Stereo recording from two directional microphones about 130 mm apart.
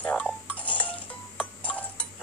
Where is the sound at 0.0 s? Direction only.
10° left (ahead or behind).